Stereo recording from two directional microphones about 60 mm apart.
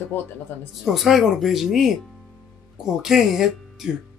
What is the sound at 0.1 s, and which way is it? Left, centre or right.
Speech, left.